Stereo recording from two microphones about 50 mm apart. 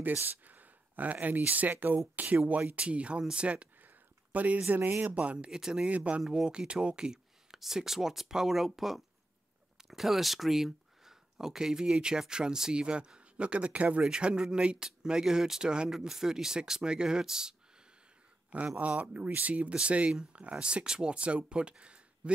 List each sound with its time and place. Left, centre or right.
0.2 s speech: right
5.5 s speech: centre
5.9 s speech: right
6.3 s speech: centre
7.5 s speech: centre; by 14.0 s right
14.0 s speech: centre
18.8 s speech: right